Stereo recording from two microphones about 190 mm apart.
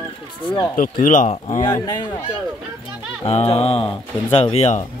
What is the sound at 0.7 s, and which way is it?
Speech, 45° left (ahead or behind).